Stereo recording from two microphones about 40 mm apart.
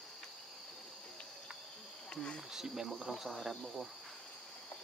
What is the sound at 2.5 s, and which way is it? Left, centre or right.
Speech, centre.